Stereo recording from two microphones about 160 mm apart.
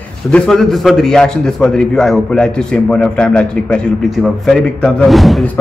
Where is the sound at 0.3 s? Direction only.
5° left (ahead or behind).